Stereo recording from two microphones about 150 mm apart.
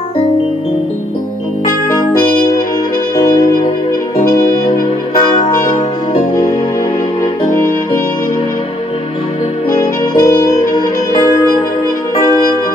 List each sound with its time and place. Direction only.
4.2 s music: 70° left (ahead or behind)
10.2 s music: 20° left (ahead or behind)